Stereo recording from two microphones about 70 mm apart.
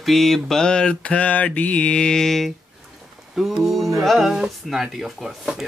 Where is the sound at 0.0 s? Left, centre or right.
Centre.